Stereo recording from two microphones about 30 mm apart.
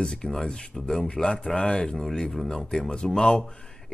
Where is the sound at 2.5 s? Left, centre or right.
Centre.